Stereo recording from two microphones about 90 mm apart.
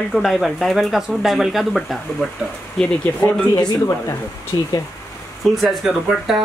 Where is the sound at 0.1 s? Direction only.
Centre (ahead or behind).